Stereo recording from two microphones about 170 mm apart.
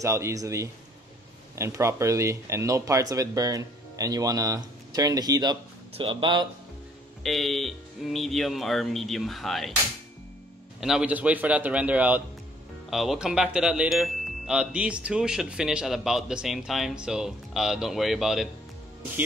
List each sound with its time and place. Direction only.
0.0 s a man's voice: 15° right (ahead or behind)
7.2 s speech: centre (ahead or behind)
10.8 s a man's voice: 5° right (ahead or behind)